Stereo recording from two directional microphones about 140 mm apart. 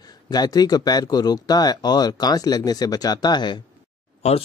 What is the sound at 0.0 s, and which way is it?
Speech, 30° left (ahead or behind).